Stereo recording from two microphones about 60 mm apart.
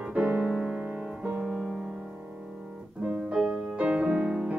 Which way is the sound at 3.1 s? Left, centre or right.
Centre.